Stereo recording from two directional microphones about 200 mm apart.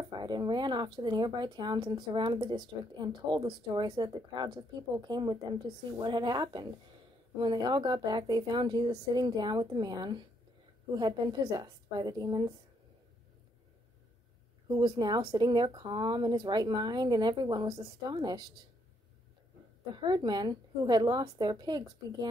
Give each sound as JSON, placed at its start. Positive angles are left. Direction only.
{"t": 0.1, "sound": "speech", "side_deg": -20}
{"t": 14.7, "sound": "speech", "side_deg": -20}
{"t": 19.9, "sound": "speech", "side_deg": -20}